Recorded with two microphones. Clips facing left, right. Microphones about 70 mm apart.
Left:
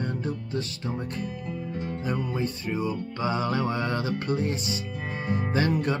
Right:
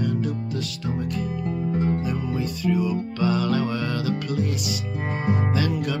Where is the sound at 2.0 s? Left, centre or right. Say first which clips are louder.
Right 2 dB; left.